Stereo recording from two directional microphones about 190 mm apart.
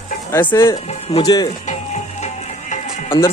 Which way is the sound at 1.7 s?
35° left (ahead or behind).